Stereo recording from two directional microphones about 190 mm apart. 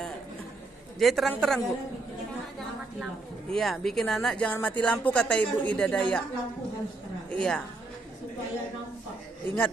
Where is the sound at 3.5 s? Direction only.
Centre (ahead or behind).